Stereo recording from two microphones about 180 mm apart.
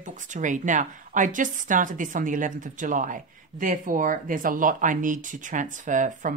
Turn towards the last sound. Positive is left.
turn(degrees=-45)  # may be behind; listen again after turning